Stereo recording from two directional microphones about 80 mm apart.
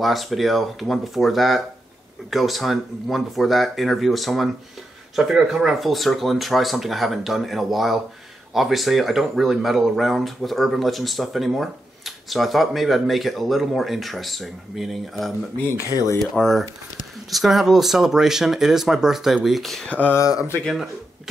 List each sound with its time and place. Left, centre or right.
0.0 s speech: centre
16.3 s speech: centre
19.9 s speech: left
20.2 s speech: left
20.6 s speech: centre